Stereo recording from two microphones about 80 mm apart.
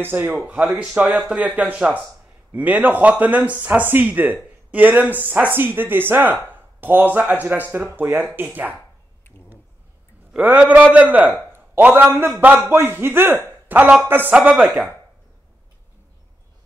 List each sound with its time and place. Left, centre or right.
0.0 s a man's voice: right
10.3 s a man's voice: centre